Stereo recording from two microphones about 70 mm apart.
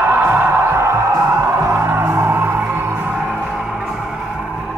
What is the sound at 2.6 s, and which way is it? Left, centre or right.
Music, right.